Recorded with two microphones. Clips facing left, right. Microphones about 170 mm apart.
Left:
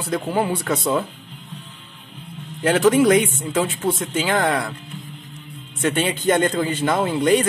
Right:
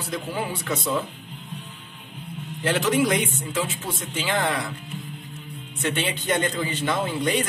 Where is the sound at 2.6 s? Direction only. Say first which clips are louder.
Left 6 dB; 50° left (ahead or behind).